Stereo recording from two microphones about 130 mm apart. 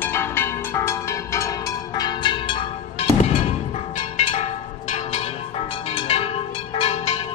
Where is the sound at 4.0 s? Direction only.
50° left (ahead or behind).